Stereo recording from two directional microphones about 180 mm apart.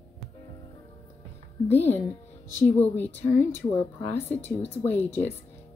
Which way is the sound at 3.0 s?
10° left (ahead or behind).